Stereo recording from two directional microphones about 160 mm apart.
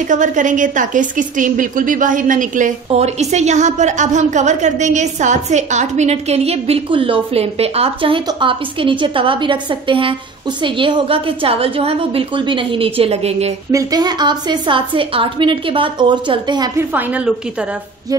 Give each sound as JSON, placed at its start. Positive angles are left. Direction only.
{"t": 0.1, "sound": "a woman's voice", "side_deg": -50}
{"t": 2.9, "sound": "a woman's voice", "side_deg": -40}
{"t": 13.7, "sound": "a woman's voice", "side_deg": -20}
{"t": 16.9, "sound": "a woman's voice", "side_deg": -10}